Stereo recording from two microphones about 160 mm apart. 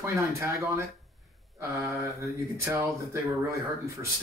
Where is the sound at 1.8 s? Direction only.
20° right (ahead or behind).